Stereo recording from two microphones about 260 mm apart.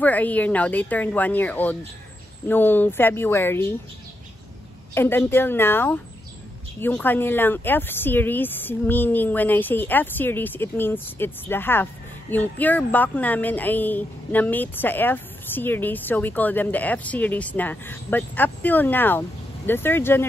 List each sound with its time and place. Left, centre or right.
0.0 s speech: centre
4.9 s speech: centre